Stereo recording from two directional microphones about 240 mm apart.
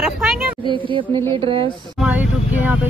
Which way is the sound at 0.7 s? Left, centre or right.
Right.